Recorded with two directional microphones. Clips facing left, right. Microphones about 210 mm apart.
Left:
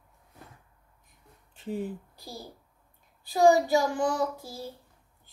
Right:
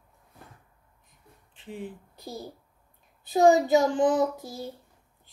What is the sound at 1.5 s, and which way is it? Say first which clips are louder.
Speech: left 5 dB; 40° left (ahead or behind).